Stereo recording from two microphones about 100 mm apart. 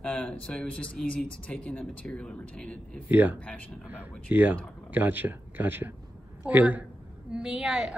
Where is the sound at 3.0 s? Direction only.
20° right (ahead or behind).